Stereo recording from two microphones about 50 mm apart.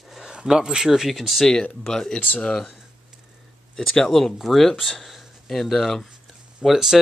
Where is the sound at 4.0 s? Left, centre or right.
Centre.